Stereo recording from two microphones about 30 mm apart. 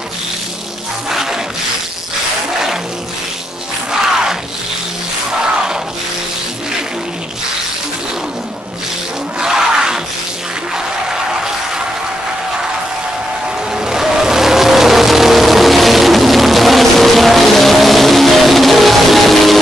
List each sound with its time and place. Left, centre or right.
1.1 s music: centre
3.9 s music: centre
9.4 s a sound: centre
13.7 s vehicle: centre